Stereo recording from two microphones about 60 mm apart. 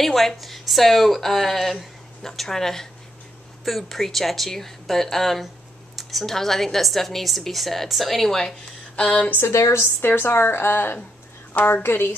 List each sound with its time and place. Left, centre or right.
0.0 s a woman's voice: centre
8.9 s speech: centre
9.5 s a woman's voice: left
10.0 s a woman's voice: left